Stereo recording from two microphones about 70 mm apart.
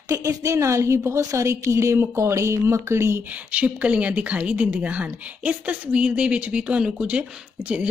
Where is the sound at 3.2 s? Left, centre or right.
Right.